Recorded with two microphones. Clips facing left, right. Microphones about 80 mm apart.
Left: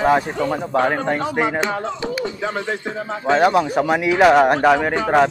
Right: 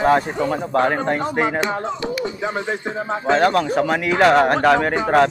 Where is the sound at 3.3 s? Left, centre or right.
Centre.